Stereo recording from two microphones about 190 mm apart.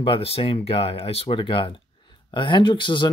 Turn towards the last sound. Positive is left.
turn(degrees=25)  # may be behind; listen again after turning